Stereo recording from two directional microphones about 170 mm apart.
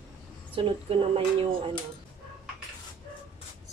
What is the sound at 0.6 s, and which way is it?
Speech, 30° right (ahead or behind).